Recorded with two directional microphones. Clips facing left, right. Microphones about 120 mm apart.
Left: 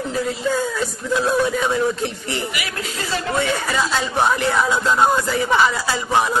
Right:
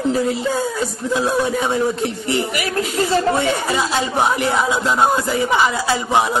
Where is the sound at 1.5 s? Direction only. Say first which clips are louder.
Right 1 dB; 30° right (ahead or behind).